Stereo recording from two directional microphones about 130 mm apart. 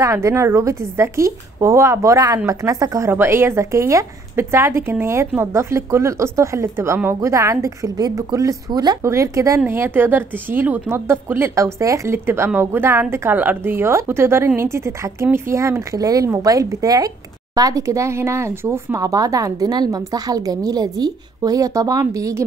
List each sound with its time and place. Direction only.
0.0 s a woman's voice: 25° right (ahead or behind)